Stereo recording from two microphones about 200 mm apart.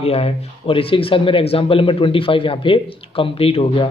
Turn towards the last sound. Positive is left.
turn(degrees=25)  # may be behind; listen again after turning